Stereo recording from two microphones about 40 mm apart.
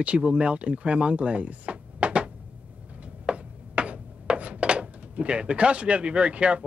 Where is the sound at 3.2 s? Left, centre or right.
Right.